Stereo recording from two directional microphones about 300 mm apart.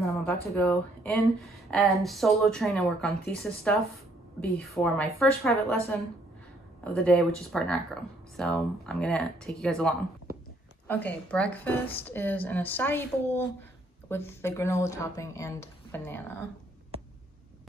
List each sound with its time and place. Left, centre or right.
0.0 s a sound: centre
0.5 s a woman's voice: centre
6.8 s speech: centre